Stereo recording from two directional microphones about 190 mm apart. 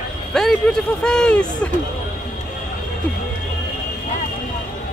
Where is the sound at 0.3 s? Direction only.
Centre (ahead or behind).